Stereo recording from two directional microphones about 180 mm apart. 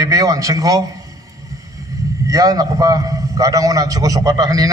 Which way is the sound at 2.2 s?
20° right (ahead or behind).